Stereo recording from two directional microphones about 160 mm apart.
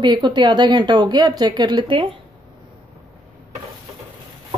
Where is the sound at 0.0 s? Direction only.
30° right (ahead or behind).